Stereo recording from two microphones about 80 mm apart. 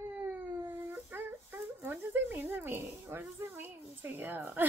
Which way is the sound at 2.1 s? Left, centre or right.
Right.